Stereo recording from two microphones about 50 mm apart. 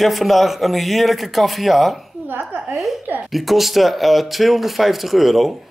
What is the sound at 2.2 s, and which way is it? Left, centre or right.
Speech, right.